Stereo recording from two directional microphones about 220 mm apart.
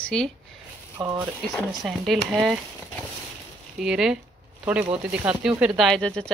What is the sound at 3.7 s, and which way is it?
A woman's voice, centre (ahead or behind).